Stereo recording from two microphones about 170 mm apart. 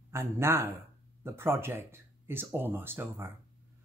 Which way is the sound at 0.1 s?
15° right (ahead or behind).